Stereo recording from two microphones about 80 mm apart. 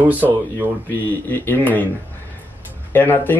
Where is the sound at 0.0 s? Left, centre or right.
Right.